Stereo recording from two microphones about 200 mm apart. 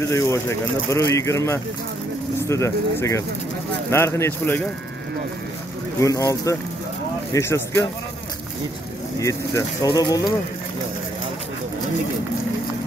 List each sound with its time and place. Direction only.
0.1 s speech: 15° left (ahead or behind)
5.9 s speech: 15° left (ahead or behind)
9.2 s speech: 15° left (ahead or behind)